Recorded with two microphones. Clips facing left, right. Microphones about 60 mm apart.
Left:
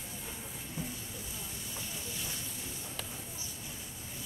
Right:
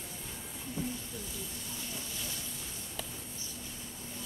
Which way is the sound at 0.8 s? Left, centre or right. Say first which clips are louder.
Right 4 dB; centre.